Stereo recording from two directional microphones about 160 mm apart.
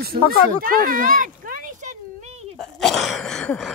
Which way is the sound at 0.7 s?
60° right (ahead or behind).